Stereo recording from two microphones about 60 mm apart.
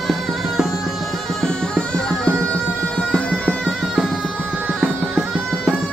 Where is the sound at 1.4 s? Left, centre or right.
Centre.